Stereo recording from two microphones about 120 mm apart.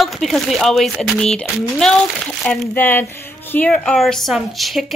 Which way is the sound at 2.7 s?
15° left (ahead or behind).